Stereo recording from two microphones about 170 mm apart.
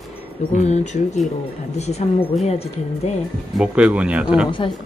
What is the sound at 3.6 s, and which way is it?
Speech, 5° right (ahead or behind).